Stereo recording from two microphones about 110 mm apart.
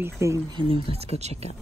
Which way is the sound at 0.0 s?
25° right (ahead or behind).